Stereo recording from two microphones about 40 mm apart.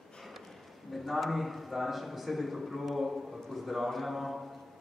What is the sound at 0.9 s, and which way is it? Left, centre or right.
A man's voice, centre.